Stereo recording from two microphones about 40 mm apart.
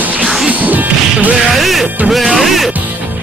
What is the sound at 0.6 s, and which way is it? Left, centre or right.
Whip, right.